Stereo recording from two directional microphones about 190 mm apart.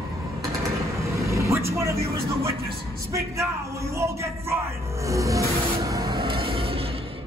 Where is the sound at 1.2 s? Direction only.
15° right (ahead or behind).